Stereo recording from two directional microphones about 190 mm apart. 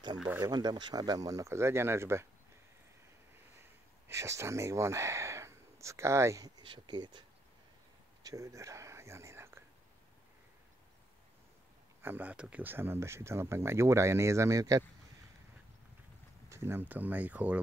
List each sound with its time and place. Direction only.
0.4 s speech: 20° right (ahead or behind)
4.1 s speech: 15° right (ahead or behind)
8.2 s whispering: 20° right (ahead or behind)
12.0 s speech: 10° right (ahead or behind)
16.4 s speech: 15° right (ahead or behind)